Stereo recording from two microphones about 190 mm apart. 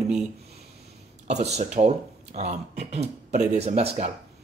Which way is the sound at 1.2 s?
35° right (ahead or behind).